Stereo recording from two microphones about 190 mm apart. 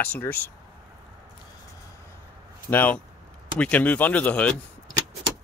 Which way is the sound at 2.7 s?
10° left (ahead or behind).